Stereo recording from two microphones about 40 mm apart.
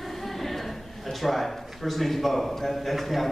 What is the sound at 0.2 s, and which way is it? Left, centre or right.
A man's voice, centre.